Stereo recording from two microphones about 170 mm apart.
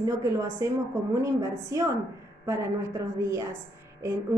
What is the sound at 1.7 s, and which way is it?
Speech, 15° right (ahead or behind).